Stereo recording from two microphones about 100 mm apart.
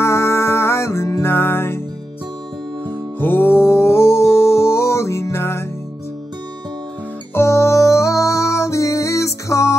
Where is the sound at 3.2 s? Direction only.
20° left (ahead or behind).